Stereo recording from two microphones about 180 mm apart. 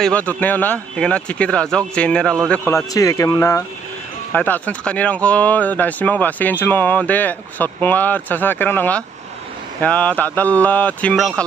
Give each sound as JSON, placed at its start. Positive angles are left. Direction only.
{"t": 0.0, "sound": "speech", "side_deg": 10}
{"t": 2.7, "sound": "speech", "side_deg": 20}